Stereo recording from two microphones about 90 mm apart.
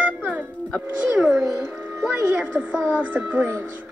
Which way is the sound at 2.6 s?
20° right (ahead or behind).